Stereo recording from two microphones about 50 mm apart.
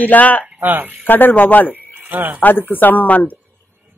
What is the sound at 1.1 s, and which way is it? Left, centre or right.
Speech, left.